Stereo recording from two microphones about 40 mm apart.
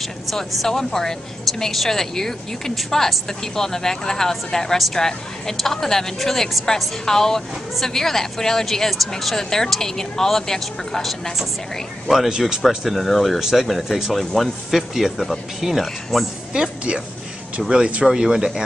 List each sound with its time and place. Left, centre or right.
0.0 s speech: centre
12.3 s speech: centre
12.9 s speech: centre
13.4 s speech: centre
17.6 s speech: right